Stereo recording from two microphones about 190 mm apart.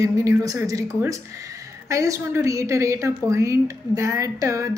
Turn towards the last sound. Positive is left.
turn(degrees=-15)  # may be behind; listen again after turning